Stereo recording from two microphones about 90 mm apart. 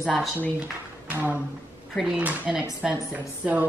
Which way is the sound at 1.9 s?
5° right (ahead or behind).